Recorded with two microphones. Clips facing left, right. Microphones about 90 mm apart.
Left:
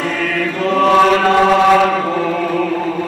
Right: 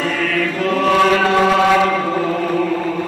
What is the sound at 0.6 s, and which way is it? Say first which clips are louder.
Chant: left 4 dB; 30° left (ahead or behind).